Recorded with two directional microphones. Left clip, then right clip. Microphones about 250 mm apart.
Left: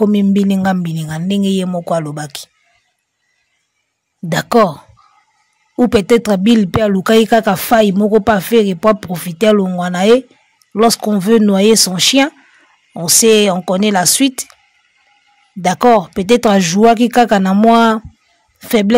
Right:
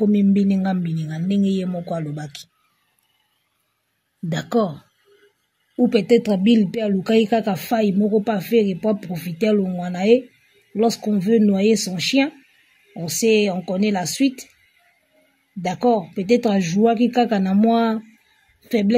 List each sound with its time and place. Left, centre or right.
0.1 s speech: left
4.3 s speech: left
5.9 s speech: left
15.6 s speech: left